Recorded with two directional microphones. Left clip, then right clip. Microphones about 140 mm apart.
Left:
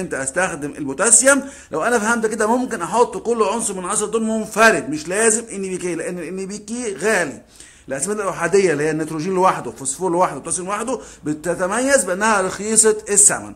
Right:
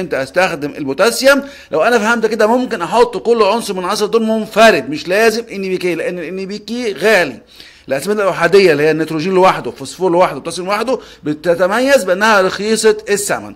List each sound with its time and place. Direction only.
0.1 s a man's voice: 25° right (ahead or behind)
3.9 s a man's voice: 50° right (ahead or behind)
4.2 s a man's voice: 20° right (ahead or behind)